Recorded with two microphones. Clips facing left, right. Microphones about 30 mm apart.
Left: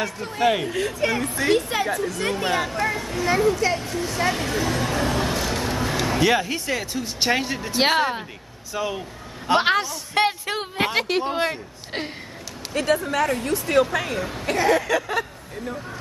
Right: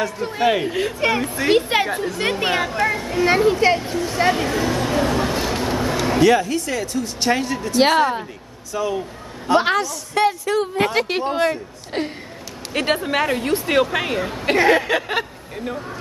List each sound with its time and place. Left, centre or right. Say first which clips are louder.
0.2 s a man's voice: right 2 dB; centre
1.0 s speech: right 4 dB; right
1.5 s speech: right 5 dB; right
2.9 s a woman's voice: right 5 dB; centre
3.3 s speech: right 4 dB; right
3.9 s a man's voice: right 5 dB; centre
4.6 s vehicle: right 4 dB; centre
6.2 s speech: right 6 dB; centre
7.8 s speech: right 4 dB; centre
10.1 s a woman's voice: right 4 dB; left
10.7 s speech: right 3 dB; centre
11.1 s speech: right 1 dB; centre
11.3 s speech: right 4 dB; centre
12.7 s a woman's voice: right 2 dB; right